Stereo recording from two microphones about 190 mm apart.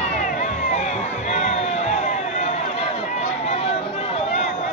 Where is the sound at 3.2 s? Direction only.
35° left (ahead or behind).